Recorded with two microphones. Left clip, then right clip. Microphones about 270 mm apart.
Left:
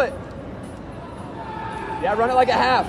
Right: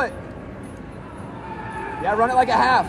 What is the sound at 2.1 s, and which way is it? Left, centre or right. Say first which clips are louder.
Speech: even; right.